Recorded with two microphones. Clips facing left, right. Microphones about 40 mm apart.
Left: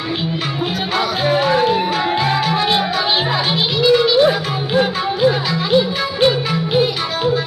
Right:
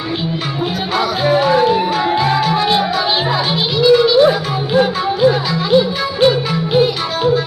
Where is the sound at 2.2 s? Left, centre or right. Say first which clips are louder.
Right 2 dB; left.